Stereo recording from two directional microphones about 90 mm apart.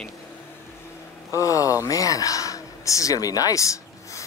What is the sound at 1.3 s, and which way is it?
Speech, 40° left (ahead or behind).